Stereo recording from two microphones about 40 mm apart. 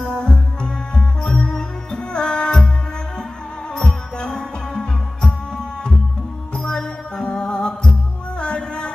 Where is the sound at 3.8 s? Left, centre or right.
Centre.